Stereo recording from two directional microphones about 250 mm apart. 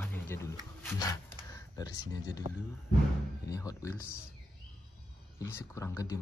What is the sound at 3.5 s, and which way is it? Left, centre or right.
Speech, centre.